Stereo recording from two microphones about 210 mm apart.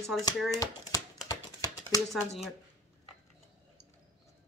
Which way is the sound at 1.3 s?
15° left (ahead or behind).